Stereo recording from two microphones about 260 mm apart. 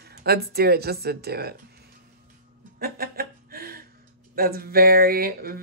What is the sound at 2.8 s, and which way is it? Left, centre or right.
Chuckle, right.